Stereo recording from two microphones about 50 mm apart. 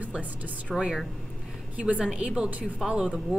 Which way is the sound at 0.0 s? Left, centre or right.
Right.